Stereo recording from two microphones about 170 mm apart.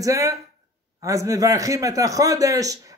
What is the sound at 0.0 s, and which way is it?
Speech, 20° right (ahead or behind).